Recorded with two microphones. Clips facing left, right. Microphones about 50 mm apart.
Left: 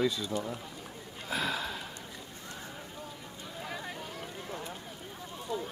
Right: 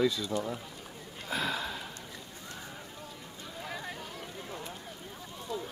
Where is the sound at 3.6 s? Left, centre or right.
Centre.